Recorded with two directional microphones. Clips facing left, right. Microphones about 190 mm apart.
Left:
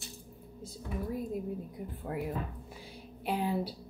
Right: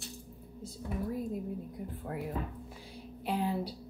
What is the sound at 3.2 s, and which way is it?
Speech, 5° left (ahead or behind).